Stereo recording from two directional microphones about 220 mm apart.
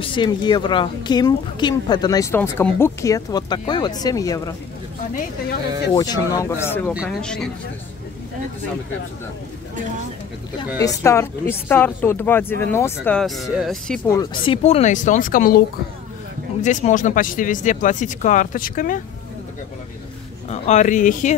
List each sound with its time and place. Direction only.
0.0 s a woman's voice: 20° left (ahead or behind)
5.9 s speech: 15° left (ahead or behind)
6.9 s speech: centre (ahead or behind)
10.8 s speech: 15° left (ahead or behind)
14.1 s speech: 20° left (ahead or behind); by 15.6 s 40° left (ahead or behind)
16.6 s speech: 35° left (ahead or behind)
20.4 s speech: 30° left (ahead or behind)